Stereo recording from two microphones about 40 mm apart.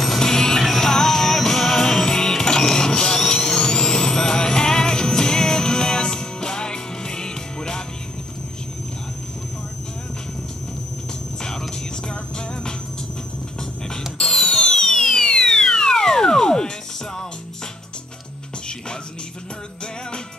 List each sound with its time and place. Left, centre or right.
0.2 s music: centre
12.1 s music: left
14.1 s music: centre